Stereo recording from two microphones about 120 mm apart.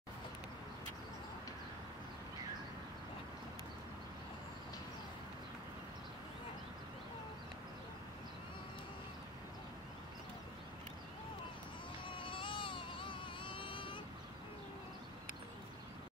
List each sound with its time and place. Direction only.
12.1 s baby cry: 45° left (ahead or behind)